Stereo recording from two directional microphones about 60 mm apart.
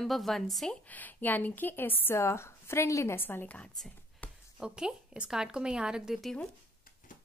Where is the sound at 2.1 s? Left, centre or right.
Left.